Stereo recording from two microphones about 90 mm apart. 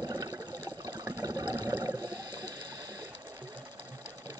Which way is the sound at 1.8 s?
45° right (ahead or behind).